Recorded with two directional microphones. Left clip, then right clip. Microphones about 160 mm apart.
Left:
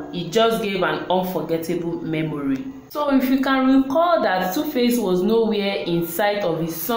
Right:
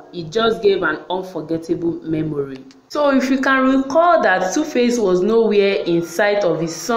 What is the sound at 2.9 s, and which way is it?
A woman's voice, 20° right (ahead or behind).